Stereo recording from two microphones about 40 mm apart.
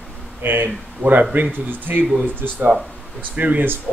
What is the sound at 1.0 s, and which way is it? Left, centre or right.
Speech, right.